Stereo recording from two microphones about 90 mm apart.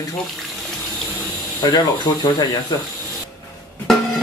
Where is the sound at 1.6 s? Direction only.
50° left (ahead or behind).